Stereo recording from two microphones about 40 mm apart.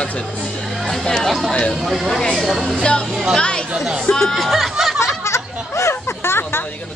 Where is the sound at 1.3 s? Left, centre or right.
Centre.